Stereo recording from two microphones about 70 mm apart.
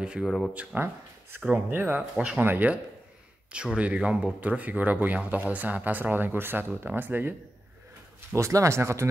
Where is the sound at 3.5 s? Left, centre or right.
Centre.